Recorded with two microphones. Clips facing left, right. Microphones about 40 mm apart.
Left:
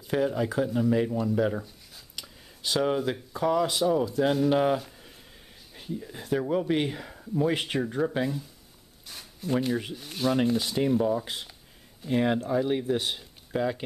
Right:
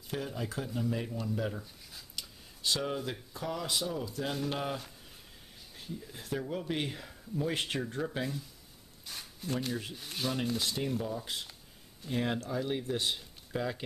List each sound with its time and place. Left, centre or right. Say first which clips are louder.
0.1 s speech: left 11 dB; centre
1.6 s a sound: left 5 dB; centre
3.0 s speech: left 10 dB; centre
4.3 s speech: left 12 dB; centre
9.0 s a sound: left 3 dB; centre
9.5 s speech: left 8 dB; centre
9.9 s speech: left 8 dB; centre
10.3 s speech: left 9 dB; centre